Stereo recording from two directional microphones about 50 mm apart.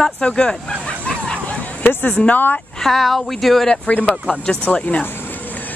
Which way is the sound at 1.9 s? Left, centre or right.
Left.